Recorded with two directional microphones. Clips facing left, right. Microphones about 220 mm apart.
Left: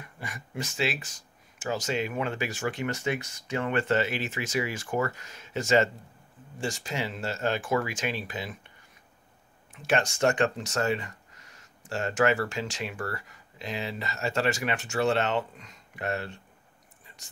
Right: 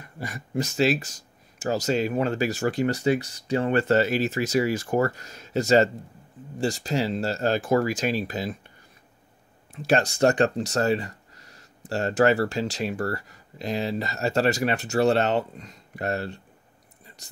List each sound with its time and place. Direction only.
0.2 s speech: 40° right (ahead or behind)
9.8 s speech: 35° right (ahead or behind)